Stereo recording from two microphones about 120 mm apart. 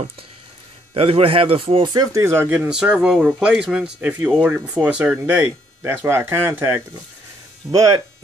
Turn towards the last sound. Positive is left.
turn(degrees=-30)  # may be behind; listen again after turning